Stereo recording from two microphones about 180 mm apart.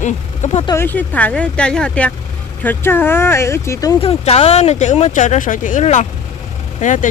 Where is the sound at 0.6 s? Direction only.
15° left (ahead or behind).